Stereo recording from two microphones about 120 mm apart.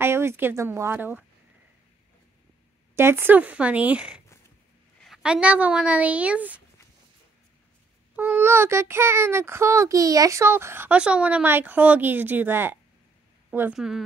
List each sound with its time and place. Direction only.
0.0 s speech: 20° right (ahead or behind)
3.0 s speech: 20° right (ahead or behind)
8.2 s a child's voice: 15° right (ahead or behind)